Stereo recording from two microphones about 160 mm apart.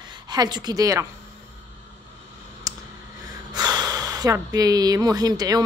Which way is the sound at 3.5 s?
25° right (ahead or behind).